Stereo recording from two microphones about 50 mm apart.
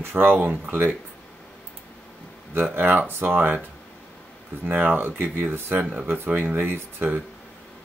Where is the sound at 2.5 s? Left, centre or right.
Right.